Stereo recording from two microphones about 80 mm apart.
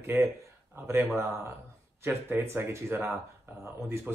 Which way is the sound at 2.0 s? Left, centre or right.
Right.